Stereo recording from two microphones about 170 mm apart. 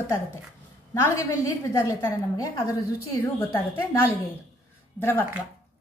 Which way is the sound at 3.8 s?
15° left (ahead or behind).